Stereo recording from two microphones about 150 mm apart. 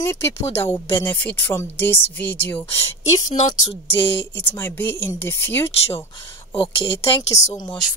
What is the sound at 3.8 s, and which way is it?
Speech, 35° left (ahead or behind).